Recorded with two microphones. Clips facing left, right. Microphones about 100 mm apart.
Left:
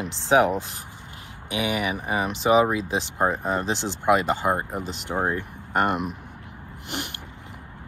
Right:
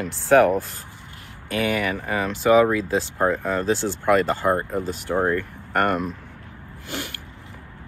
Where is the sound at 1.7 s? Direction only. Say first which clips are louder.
Right 1 dB; 15° left (ahead or behind).